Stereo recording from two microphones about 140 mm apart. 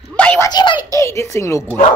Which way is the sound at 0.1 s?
10° left (ahead or behind).